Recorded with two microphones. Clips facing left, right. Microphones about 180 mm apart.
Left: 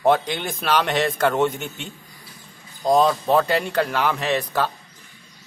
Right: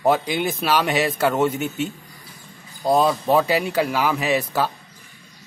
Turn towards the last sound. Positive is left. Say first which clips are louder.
# right 1 dB
turn(degrees=-5)  # may be behind; listen again after turning